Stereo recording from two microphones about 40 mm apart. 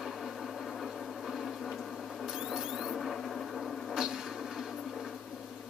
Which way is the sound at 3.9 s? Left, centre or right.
Centre.